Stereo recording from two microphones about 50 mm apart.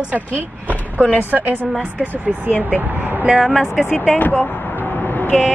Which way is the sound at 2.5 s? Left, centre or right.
Left.